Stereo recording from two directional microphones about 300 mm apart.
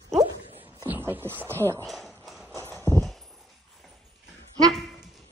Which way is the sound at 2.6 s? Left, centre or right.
Centre.